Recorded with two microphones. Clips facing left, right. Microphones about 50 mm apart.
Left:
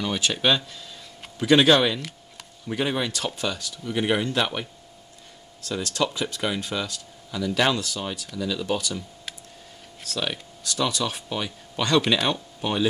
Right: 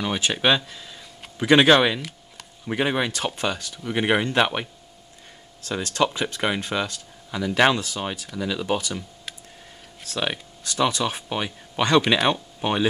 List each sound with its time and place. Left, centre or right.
0.0 s speech: right
10.0 s speech: right